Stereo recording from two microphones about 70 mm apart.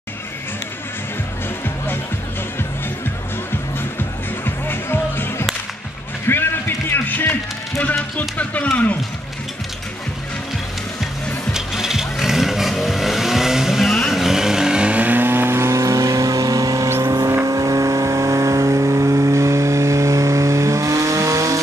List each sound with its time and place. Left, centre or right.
4.5 s music: left
7.8 s speech: left
11.5 s vehicle: centre; by 21.5 s right